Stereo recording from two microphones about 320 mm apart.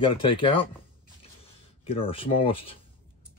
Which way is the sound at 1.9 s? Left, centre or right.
Centre.